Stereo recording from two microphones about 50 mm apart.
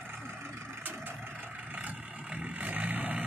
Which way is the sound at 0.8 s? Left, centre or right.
Right.